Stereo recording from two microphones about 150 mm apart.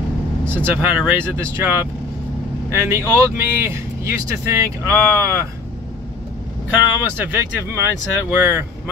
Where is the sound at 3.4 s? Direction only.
15° right (ahead or behind).